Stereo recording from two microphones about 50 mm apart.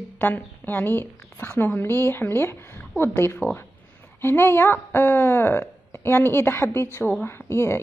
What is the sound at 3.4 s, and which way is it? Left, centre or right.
Speech, right.